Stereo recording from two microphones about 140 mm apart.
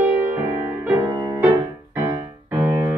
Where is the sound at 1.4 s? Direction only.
15° right (ahead or behind).